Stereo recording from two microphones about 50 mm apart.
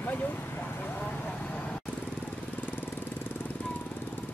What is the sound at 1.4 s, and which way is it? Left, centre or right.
Vehicle, left.